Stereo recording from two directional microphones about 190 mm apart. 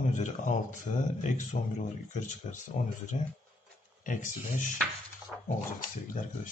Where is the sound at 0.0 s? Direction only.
40° left (ahead or behind).